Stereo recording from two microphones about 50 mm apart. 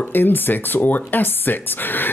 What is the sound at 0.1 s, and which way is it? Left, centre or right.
Speech, left.